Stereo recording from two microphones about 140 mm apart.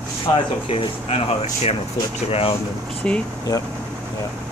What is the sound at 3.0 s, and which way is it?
Speech, 5° left (ahead or behind).